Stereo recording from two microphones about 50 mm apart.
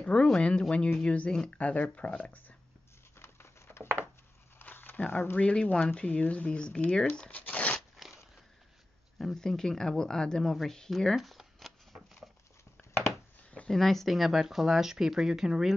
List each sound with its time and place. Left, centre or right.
0.0 s speech: centre
1.6 s speech: left
3.2 s patter: left
4.6 s a sound: left
5.4 s speech: left
7.2 s a sound: left
9.2 s speech: centre
11.1 s shuffling cards: centre
13.7 s speech: centre